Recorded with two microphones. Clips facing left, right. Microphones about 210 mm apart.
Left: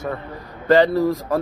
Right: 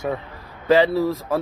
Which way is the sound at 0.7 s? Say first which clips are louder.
Left 2 dB; centre (ahead or behind).